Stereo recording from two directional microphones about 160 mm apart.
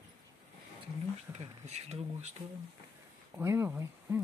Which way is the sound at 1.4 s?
45° right (ahead or behind).